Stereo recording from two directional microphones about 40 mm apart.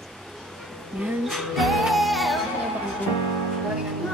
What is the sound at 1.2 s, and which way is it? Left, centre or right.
Music, centre.